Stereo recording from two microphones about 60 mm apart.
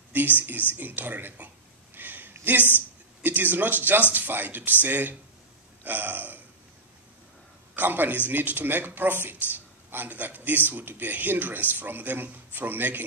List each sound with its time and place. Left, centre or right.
0.1 s a man's voice: right
2.0 s a sound: right
3.2 s a man's voice: right
7.7 s a man's voice: right